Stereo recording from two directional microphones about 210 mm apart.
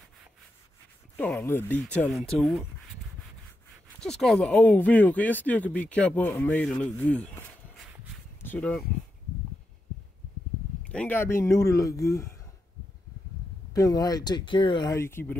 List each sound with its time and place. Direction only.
1.1 s speech: 5° left (ahead or behind)
4.0 s speech: centre (ahead or behind)
10.8 s speech: 5° left (ahead or behind)
13.7 s speech: 15° left (ahead or behind)